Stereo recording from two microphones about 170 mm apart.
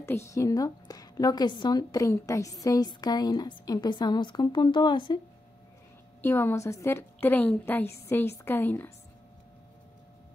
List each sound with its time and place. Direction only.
0.0 s a woman's voice: 15° left (ahead or behind)
6.2 s a woman's voice: 15° left (ahead or behind)